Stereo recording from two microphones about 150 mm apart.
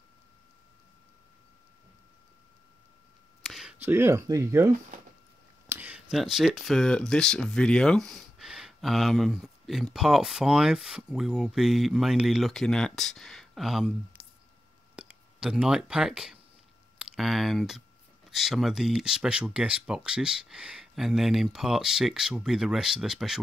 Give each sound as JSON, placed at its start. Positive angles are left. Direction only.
{"t": 3.4, "sound": "speech", "side_deg": -5}
{"t": 14.2, "sound": "a sound", "side_deg": -5}
{"t": 15.0, "sound": "speech", "side_deg": -5}